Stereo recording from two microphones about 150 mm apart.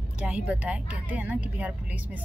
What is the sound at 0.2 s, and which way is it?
Speech, 5° right (ahead or behind).